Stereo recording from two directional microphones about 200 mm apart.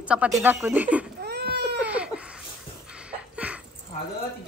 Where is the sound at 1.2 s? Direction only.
55° right (ahead or behind).